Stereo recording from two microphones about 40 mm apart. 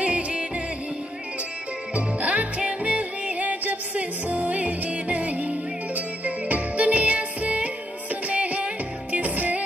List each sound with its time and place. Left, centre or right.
0.0 s music: right
2.0 s music: right